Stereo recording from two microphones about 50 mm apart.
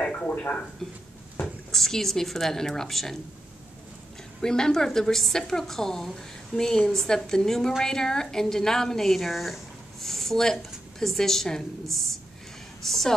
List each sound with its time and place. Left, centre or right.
0.0 s a sound: left
0.3 s speech: left
1.7 s a woman's voice: centre
4.4 s a woman's voice: centre